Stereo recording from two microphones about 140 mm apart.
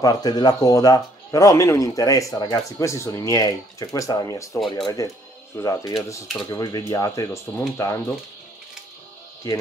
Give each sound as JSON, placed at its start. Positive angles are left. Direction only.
{"t": 0.0, "sound": "speech", "side_deg": 30}